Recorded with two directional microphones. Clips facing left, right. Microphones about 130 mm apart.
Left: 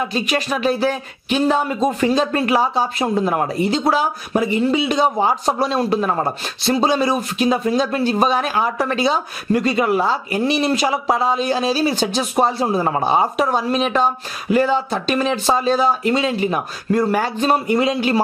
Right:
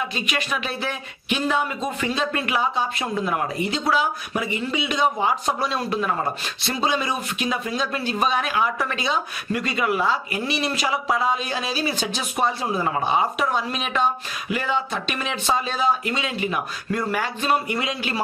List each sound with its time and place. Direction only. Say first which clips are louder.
0.1 s speech: left 6 dB; 35° left (ahead or behind)